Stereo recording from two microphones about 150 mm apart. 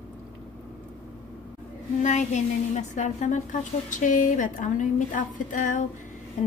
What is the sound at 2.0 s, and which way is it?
A woman's voice, 50° left (ahead or behind).